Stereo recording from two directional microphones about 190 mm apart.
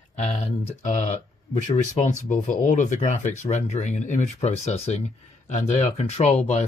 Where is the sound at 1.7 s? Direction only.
40° left (ahead or behind).